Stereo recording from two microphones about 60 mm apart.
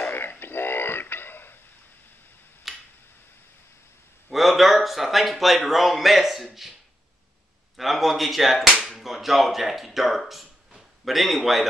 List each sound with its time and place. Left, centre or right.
0.0 s a sound: left
2.7 s tick-tock: centre
4.3 s speech: centre
7.7 s speech: centre
8.7 s whip: centre